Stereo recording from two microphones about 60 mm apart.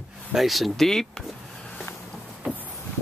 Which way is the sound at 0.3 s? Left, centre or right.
Centre.